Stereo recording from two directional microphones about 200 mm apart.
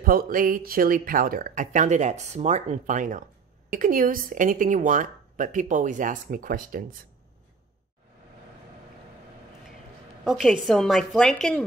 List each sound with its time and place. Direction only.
0.0 s speech: 45° right (ahead or behind)
10.2 s a woman's voice: centre (ahead or behind)